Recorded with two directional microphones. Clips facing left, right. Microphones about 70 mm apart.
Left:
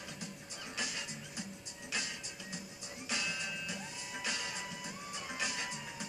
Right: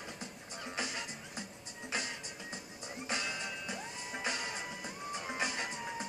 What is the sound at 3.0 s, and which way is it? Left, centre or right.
Music, right.